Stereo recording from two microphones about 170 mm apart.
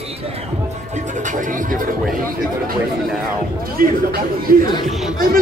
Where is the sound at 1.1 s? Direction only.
45° right (ahead or behind).